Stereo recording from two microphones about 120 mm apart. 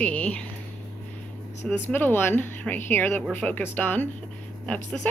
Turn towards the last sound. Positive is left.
turn(degrees=10)  # may be behind; listen again after turning